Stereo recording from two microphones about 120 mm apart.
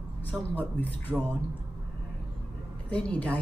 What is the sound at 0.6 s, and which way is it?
Speech, 15° left (ahead or behind).